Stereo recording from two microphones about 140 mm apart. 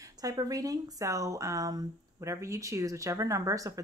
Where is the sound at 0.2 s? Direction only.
25° right (ahead or behind).